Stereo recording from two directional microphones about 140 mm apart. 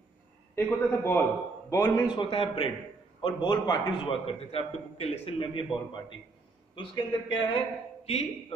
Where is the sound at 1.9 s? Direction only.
35° left (ahead or behind).